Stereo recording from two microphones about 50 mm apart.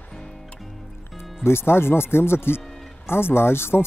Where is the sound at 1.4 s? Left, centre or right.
Left.